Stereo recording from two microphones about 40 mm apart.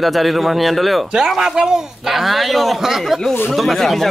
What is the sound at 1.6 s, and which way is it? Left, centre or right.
Speech, centre.